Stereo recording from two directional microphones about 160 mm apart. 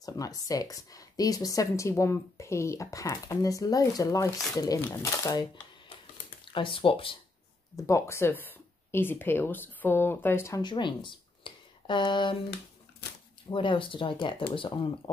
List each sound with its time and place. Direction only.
0.0 s a woman's voice: 20° left (ahead or behind)
7.7 s speech: 20° left (ahead or behind)
13.5 s speech: 30° left (ahead or behind)